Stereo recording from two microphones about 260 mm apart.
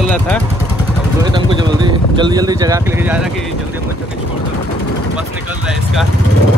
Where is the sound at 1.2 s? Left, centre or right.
Centre.